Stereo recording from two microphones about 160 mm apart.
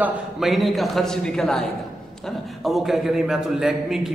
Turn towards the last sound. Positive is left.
turn(degrees=-5)  # may be behind; listen again after turning